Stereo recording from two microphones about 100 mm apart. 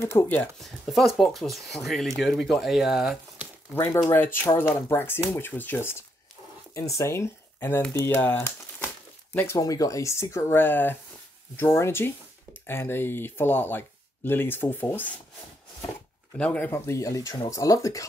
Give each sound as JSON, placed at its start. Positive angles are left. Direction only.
{"t": 0.0, "sound": "speech", "side_deg": 20}
{"t": 0.6, "sound": "speech", "side_deg": 0}
{"t": 3.7, "sound": "speech", "side_deg": 25}
{"t": 9.6, "sound": "speech", "side_deg": 35}
{"t": 16.3, "sound": "speech", "side_deg": 15}
{"t": 16.7, "sound": "speech", "side_deg": 30}